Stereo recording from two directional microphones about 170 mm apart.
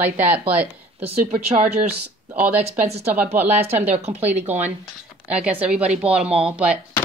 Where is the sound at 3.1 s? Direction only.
10° right (ahead or behind).